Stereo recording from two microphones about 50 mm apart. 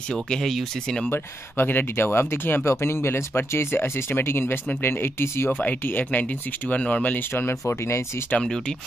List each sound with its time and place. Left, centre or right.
0.1 s speech: centre
1.1 s speech: left
2.6 s speech: left
5.6 s speech: left
7.6 s speech: left